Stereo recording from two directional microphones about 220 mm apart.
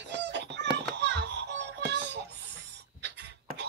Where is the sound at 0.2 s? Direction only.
50° right (ahead or behind).